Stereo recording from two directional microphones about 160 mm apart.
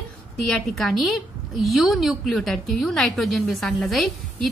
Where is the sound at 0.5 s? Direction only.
Centre (ahead or behind).